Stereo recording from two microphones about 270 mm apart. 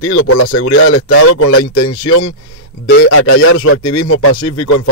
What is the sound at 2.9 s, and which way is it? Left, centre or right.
Speech, left.